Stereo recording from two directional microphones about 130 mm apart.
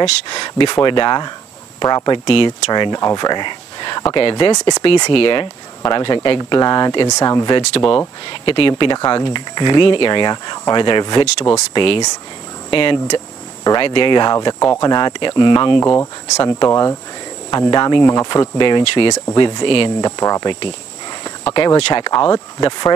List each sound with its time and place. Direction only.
0.3 s speech: 35° left (ahead or behind)
15.8 s speech: 20° left (ahead or behind)
18.0 s speech: 25° left (ahead or behind); by 20.1 s 40° left (ahead or behind)
20.1 s speech: 25° left (ahead or behind)